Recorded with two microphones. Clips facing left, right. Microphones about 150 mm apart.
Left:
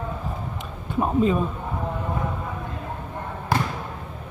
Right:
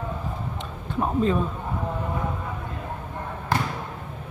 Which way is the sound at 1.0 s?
5° left (ahead or behind).